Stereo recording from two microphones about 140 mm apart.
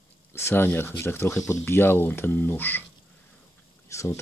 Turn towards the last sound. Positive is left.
turn(degrees=20)  # may be behind; listen again after turning